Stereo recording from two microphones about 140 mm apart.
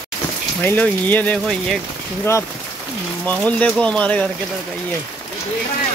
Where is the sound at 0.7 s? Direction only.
10° left (ahead or behind).